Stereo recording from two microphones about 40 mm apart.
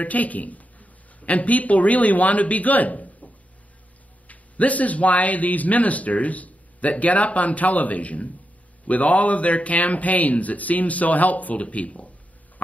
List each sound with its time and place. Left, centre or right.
0.0 s speech: left
4.3 s a man's voice: left